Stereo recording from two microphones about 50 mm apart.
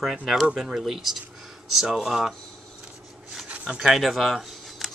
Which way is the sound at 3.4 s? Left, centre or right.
Right.